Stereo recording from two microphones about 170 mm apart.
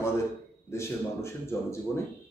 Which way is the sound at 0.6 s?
15° left (ahead or behind).